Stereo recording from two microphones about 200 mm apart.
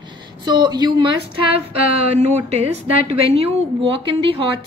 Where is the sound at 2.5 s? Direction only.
30° right (ahead or behind).